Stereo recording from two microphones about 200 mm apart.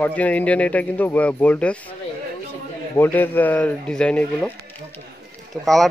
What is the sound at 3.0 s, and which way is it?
A man's voice, 10° left (ahead or behind).